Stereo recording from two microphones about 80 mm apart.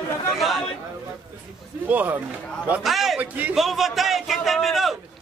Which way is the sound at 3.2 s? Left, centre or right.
Centre.